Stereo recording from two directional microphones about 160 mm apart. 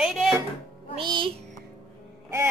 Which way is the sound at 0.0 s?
Centre (ahead or behind).